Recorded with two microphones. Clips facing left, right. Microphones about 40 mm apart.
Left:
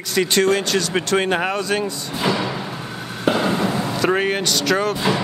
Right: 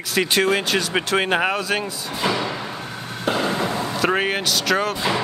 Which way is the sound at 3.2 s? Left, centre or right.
Centre.